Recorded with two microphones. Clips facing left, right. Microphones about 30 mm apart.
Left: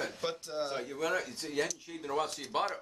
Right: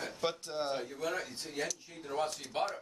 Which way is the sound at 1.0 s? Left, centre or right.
Left.